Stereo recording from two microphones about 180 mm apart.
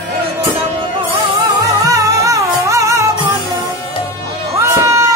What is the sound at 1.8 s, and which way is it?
Music, 15° right (ahead or behind).